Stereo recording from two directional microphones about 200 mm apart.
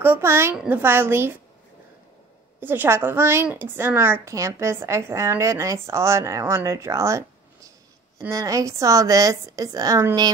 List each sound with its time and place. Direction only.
0.0 s a woman's voice: 10° right (ahead or behind)
2.6 s a woman's voice: 10° right (ahead or behind)